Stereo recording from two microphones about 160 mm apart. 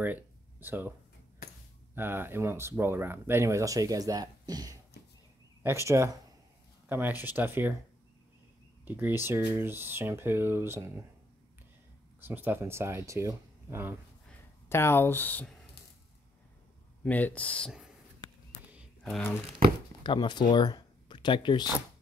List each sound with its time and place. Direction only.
0.0 s a sound: 10° right (ahead or behind)
2.0 s speech: 15° right (ahead or behind)
8.8 s speech: 15° right (ahead or behind)
12.2 s speech: 10° right (ahead or behind)
14.7 s speech: 15° left (ahead or behind)
17.0 s speech: 10° left (ahead or behind)
19.6 s speech: 75° right (ahead or behind)
20.0 s speech: 30° left (ahead or behind)